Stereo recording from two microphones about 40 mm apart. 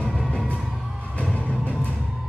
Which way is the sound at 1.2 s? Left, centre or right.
Left.